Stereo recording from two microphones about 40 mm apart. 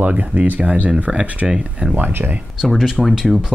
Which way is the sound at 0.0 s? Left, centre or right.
Right.